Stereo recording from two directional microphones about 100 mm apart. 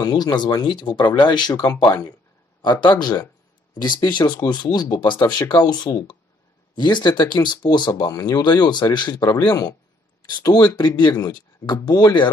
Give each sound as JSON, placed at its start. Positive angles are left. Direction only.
{"t": 0.0, "sound": "speech", "side_deg": 45}
{"t": 6.8, "sound": "a man's voice", "side_deg": 50}